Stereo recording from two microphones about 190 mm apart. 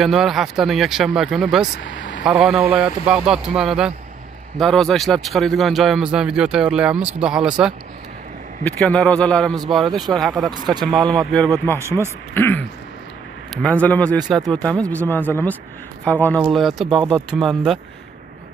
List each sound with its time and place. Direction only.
0.0 s a man's voice: centre (ahead or behind)
1.8 s vehicle: 70° left (ahead or behind)
2.2 s a man's voice: 5° right (ahead or behind)
10.5 s speech: 20° right (ahead or behind)
11.0 s a man's voice: 5° left (ahead or behind)
16.9 s speech: 25° right (ahead or behind)
17.3 s a man's voice: centre (ahead or behind)